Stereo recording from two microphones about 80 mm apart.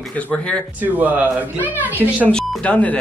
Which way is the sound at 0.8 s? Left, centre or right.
Right.